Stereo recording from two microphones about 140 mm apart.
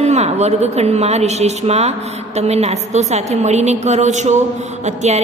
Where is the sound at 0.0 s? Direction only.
55° right (ahead or behind).